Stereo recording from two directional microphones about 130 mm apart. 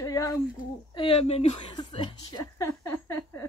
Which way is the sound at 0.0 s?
25° left (ahead or behind).